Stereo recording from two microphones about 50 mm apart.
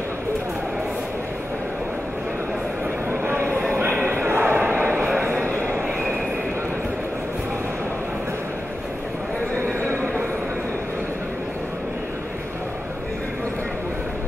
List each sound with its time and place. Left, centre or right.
3.3 s a sound: right
3.7 s bow-wow: right
5.4 s train: right